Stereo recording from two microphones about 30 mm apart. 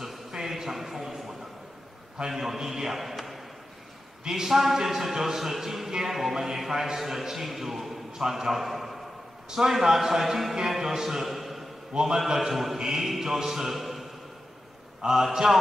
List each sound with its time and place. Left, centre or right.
0.3 s a sound: centre
2.2 s a man's voice: centre
3.2 s a sound: centre
4.3 s a man's voice: centre
11.9 s a man's voice: right
12.4 s a man's voice: centre
15.0 s a man's voice: centre